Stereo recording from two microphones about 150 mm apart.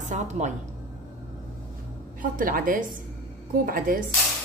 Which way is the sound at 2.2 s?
65° right (ahead or behind).